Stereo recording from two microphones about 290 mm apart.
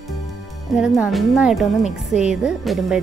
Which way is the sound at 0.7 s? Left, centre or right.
Centre.